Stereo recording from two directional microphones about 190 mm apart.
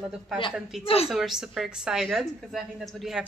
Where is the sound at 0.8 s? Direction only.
30° left (ahead or behind).